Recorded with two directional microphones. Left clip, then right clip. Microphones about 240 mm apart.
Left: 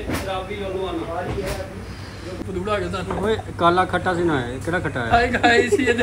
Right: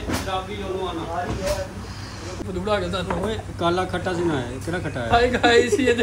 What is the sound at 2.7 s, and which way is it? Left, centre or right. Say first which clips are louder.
Speech: right 1 dB; right.